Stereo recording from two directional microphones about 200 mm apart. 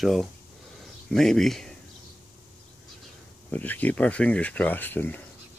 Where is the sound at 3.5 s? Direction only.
10° left (ahead or behind).